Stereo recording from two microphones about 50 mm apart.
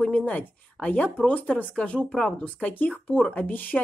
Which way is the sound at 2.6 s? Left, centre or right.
Left.